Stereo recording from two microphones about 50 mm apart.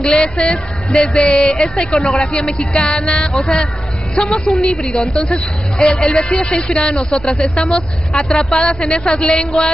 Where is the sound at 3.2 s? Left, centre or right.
Centre.